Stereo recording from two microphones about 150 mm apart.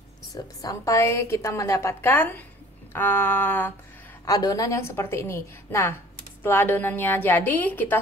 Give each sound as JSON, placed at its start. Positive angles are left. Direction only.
{"t": 0.3, "sound": "a woman's voice", "side_deg": 25}
{"t": 4.3, "sound": "a woman's voice", "side_deg": 25}